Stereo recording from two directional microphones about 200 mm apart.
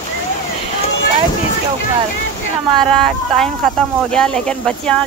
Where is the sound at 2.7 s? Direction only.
5° left (ahead or behind).